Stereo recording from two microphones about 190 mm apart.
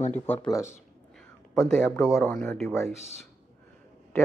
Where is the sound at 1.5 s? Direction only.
5° left (ahead or behind).